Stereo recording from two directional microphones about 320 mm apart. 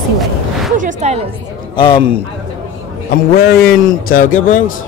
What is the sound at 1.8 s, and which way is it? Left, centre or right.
Speech, centre.